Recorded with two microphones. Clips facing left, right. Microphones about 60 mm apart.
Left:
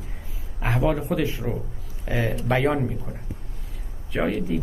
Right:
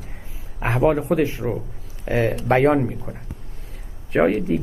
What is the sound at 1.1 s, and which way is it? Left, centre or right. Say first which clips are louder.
A man's voice: right 5 dB; right.